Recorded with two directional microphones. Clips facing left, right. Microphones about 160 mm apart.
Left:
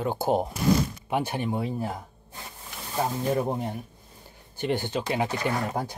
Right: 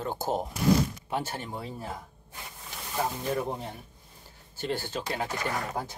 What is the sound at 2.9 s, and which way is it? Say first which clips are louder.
Speech: left 4 dB; 25° left (ahead or behind).